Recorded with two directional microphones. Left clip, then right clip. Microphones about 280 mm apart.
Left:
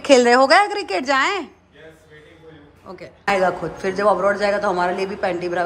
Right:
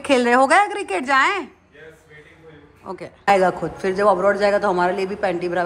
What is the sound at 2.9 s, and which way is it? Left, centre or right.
Speech, centre.